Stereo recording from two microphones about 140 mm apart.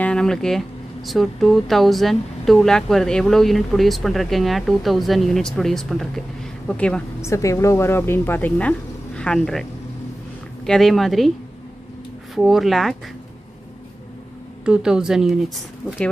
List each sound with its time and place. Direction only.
0.0 s speech: 5° left (ahead or behind)
7.2 s speech: 20° left (ahead or behind); by 11.3 s centre (ahead or behind)
12.4 s speech: centre (ahead or behind)
14.6 s speech: 5° right (ahead or behind)